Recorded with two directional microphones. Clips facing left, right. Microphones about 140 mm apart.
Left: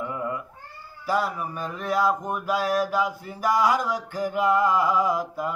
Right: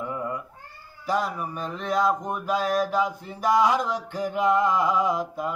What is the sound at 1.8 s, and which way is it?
Mantra, 5° left (ahead or behind).